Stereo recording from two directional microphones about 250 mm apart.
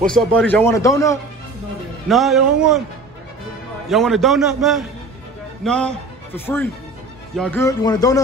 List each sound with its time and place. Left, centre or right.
0.0 s a man's voice: centre
2.0 s a man's voice: centre
3.9 s a man's voice: centre